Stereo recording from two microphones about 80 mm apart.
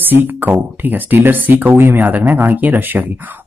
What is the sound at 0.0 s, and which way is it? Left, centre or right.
Speech, right.